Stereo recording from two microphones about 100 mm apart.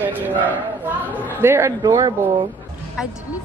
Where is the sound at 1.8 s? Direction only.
40° right (ahead or behind).